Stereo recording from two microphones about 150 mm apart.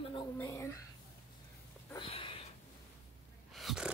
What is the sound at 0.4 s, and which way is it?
Speech, 20° left (ahead or behind).